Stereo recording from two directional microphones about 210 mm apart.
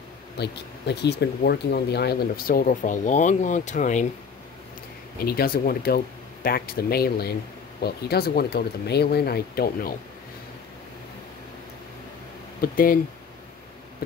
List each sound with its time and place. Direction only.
0.4 s speech: 50° left (ahead or behind); by 4.1 s 35° left (ahead or behind)
5.2 s speech: 45° left (ahead or behind)
12.7 s speech: 45° left (ahead or behind)